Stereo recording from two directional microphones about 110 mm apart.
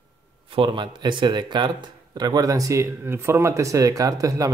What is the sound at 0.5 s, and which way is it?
Speech, 50° right (ahead or behind).